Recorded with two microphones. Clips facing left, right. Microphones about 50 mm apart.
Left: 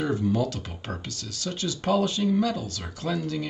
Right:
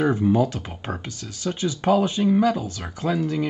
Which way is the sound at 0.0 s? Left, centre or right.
Right.